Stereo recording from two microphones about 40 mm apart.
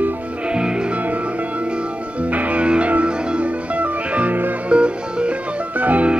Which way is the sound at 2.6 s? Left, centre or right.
Right.